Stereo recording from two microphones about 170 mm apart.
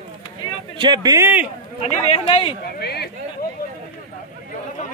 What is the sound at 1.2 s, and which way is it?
Speech, 10° right (ahead or behind).